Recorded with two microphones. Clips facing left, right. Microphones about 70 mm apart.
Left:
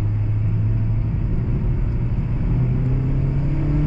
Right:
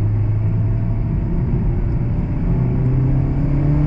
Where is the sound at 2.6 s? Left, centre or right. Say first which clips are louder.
Right 4 dB; centre.